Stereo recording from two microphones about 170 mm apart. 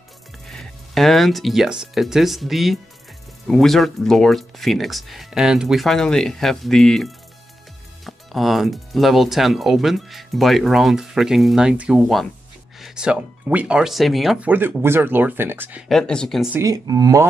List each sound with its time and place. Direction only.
0.5 s speech: centre (ahead or behind)
15.9 s speech: 5° left (ahead or behind)
16.5 s speech: 20° right (ahead or behind)